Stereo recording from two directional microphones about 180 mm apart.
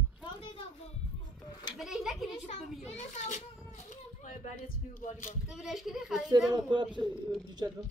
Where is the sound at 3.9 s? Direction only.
45° left (ahead or behind).